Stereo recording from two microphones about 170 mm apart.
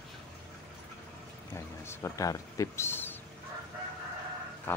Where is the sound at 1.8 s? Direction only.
20° left (ahead or behind).